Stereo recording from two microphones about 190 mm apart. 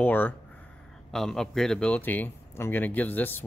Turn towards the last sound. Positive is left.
turn(degrees=10)  # may be behind; listen again after turning